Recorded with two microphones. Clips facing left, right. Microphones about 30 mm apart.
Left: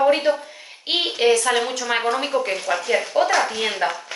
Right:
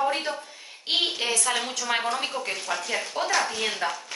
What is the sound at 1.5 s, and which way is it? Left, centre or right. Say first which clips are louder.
Speech: left 6 dB; centre.